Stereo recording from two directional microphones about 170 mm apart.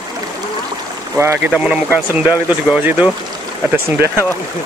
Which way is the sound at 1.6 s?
10° right (ahead or behind).